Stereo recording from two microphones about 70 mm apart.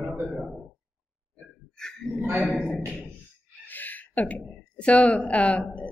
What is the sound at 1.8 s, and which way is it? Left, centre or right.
Speech, centre.